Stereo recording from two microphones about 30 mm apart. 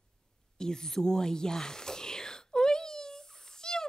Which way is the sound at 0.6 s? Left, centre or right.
Left.